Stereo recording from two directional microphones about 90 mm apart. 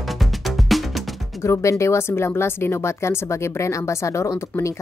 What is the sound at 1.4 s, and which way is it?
Speech, 30° left (ahead or behind).